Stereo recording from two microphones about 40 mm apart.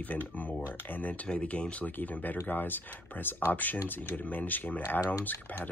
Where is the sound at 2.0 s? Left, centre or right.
Left.